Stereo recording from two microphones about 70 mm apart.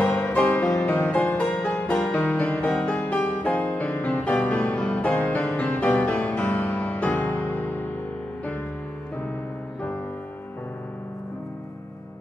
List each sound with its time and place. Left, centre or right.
0.0 s music: centre
0.7 s music: centre
1.1 s music: left